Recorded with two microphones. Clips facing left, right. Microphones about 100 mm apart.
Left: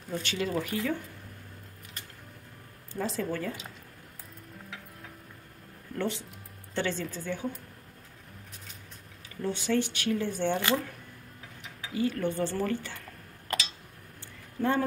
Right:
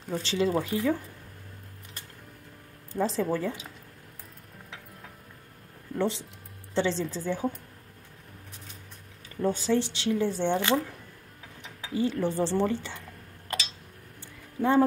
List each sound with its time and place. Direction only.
0.1 s speech: 30° right (ahead or behind)
2.9 s speech: 30° right (ahead or behind)
5.9 s speech: 25° right (ahead or behind)
9.4 s speech: 40° right (ahead or behind)
9.7 s speech: 25° right (ahead or behind)
11.8 s speech: 25° right (ahead or behind)